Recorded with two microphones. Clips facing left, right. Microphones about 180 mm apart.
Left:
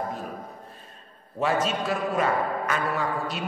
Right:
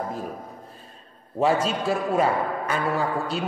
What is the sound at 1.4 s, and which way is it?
A man's voice, 30° right (ahead or behind).